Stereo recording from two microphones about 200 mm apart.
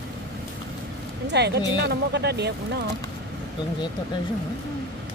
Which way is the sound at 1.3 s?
55° right (ahead or behind).